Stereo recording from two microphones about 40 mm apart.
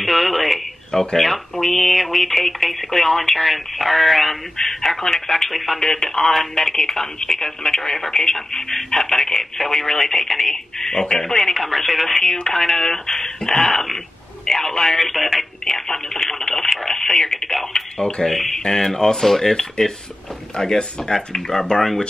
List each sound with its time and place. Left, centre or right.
0.0 s speech: centre
18.3 s speech: centre